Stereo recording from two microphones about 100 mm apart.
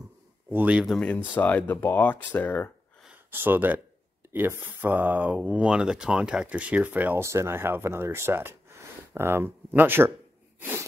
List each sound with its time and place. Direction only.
0.5 s speech: 15° right (ahead or behind)
0.8 s speech: 5° left (ahead or behind)
3.3 s speech: 20° right (ahead or behind)
7.2 s speech: 25° right (ahead or behind)